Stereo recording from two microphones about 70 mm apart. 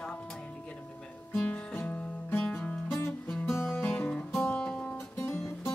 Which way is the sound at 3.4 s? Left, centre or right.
Left.